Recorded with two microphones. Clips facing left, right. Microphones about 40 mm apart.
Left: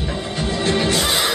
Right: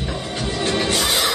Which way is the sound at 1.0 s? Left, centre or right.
Centre.